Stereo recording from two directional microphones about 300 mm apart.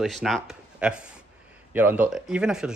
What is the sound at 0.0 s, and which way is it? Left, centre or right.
Speech, centre.